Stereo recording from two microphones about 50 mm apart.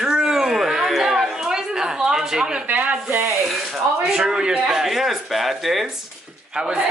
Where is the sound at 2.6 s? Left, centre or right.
Right.